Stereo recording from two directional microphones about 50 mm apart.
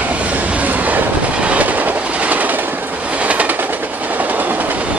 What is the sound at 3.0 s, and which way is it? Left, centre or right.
Train, right.